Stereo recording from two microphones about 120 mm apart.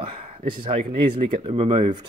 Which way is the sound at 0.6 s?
50° right (ahead or behind).